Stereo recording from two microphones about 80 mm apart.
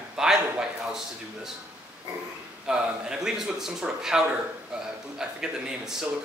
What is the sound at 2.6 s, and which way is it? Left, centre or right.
A man's voice, centre.